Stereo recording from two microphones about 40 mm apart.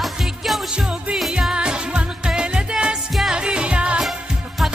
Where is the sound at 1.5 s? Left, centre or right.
Right.